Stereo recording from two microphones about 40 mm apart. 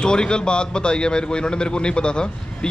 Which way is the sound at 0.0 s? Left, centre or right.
Left.